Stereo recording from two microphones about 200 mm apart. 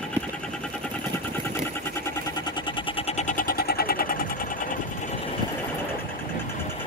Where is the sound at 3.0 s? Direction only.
30° left (ahead or behind).